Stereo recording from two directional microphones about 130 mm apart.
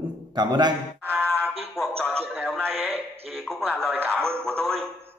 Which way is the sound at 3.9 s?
15° right (ahead or behind).